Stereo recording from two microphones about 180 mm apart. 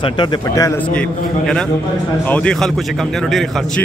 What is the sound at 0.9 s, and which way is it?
A man's voice, 5° left (ahead or behind).